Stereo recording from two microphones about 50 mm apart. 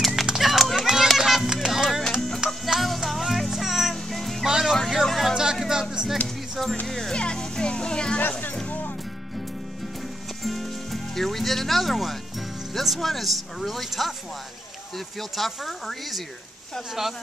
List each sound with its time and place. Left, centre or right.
0.4 s music: centre
1.9 s music: centre
4.5 s music: centre
5.0 s music: centre
5.3 s music: centre
6.2 s music: centre
6.9 s speech: centre
7.2 s music: centre
8.2 s music: left
10.4 s music: centre
12.7 s speech: centre
15.1 s speech: centre